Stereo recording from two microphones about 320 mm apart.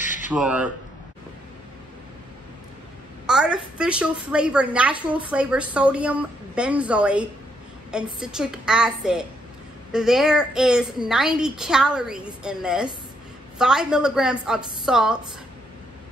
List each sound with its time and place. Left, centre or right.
0.0 s a sound: left
0.4 s a woman's voice: centre
3.3 s a woman's voice: centre